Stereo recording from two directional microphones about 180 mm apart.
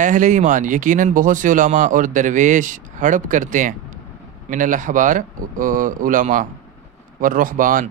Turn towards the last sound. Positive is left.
turn(degrees=-50)  # may be behind; listen again after turning